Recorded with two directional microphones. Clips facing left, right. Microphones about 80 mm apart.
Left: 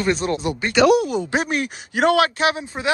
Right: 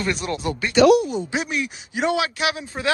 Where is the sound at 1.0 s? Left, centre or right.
Left.